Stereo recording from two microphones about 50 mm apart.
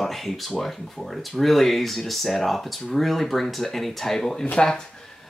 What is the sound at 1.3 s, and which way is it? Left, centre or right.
Speech, centre.